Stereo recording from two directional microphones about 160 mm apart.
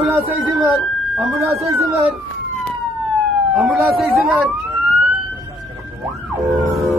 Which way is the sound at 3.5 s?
Centre (ahead or behind).